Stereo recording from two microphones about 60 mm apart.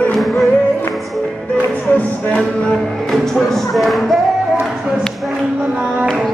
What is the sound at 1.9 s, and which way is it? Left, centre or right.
Music, left.